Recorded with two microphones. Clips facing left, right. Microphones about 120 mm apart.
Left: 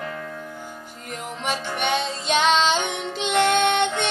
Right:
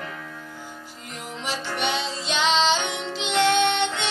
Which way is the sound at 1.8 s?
50° left (ahead or behind).